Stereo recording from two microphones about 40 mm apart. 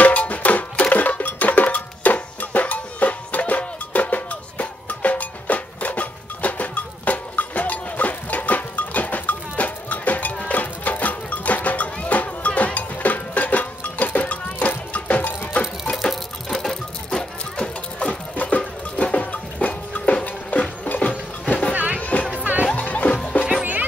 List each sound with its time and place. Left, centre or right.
0.0 s music: left
16.0 s music: centre
18.3 s a sound: left
21.7 s music: right
22.8 s music: left
23.6 s music: right